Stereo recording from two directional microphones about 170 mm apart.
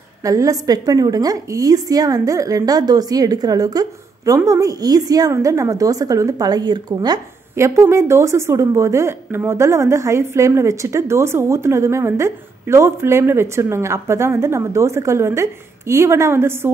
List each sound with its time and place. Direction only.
0.2 s a woman's voice: 20° right (ahead or behind)